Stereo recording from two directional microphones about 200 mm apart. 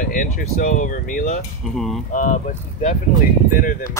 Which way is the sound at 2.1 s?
40° left (ahead or behind).